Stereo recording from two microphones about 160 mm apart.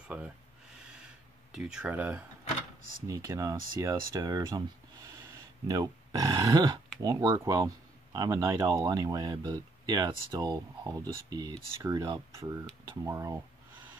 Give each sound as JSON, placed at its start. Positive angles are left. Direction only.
{"t": 1.5, "sound": "speech", "side_deg": -5}